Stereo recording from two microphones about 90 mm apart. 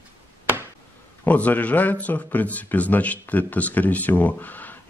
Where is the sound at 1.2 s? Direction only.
15° left (ahead or behind).